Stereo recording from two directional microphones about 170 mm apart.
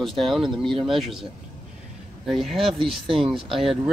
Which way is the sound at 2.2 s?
Centre (ahead or behind).